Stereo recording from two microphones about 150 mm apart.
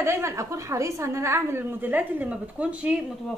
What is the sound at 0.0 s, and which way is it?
A woman's voice, 15° right (ahead or behind).